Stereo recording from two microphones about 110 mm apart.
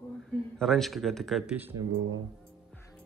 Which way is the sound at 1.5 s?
15° right (ahead or behind).